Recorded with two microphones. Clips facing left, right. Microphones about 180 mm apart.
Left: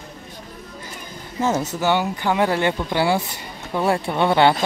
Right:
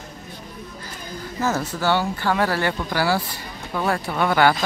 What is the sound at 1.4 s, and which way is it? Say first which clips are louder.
Speech: left 2 dB; 20° left (ahead or behind).